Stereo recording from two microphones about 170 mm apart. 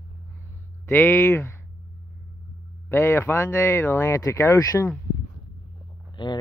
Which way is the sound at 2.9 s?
15° left (ahead or behind).